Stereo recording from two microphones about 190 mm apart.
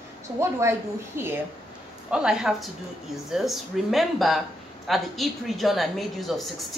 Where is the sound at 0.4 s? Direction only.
15° right (ahead or behind).